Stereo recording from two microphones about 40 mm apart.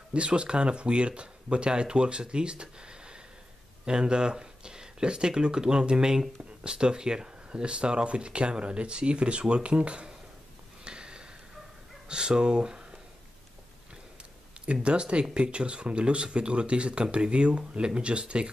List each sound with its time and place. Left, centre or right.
0.1 s speech: right
10.8 s a sound: right
12.1 s speech: right
14.7 s speech: right